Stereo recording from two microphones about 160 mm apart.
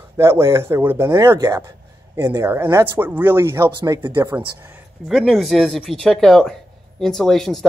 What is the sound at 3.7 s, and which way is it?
Speech, 30° right (ahead or behind).